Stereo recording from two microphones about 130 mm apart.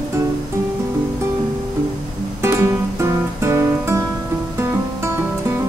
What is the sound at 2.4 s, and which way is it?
Music, 20° right (ahead or behind).